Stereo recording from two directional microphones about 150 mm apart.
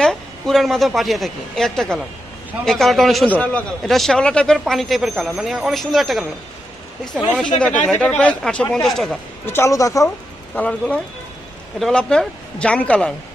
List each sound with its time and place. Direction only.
0.0 s speech: 5° left (ahead or behind)
7.6 s speech: 10° left (ahead or behind)
9.5 s speech: 20° left (ahead or behind)
10.5 s speech: 10° left (ahead or behind)